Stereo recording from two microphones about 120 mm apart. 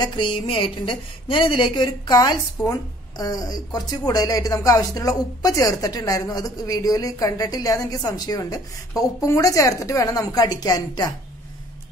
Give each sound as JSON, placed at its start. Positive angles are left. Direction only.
{"t": 0.0, "sound": "a woman's voice", "side_deg": 40}